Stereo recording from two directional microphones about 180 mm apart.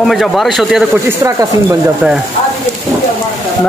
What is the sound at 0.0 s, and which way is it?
Speech, centre (ahead or behind).